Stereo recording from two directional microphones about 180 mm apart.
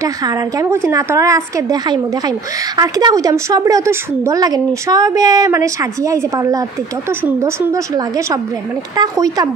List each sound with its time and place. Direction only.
0.0 s a woman's voice: 20° right (ahead or behind)